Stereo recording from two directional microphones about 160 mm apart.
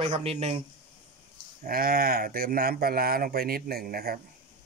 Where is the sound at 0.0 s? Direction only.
40° right (ahead or behind).